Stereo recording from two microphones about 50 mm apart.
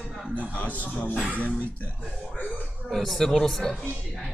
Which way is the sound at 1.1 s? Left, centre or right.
Right.